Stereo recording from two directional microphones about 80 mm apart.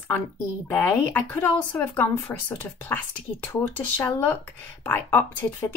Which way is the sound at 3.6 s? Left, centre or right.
Left.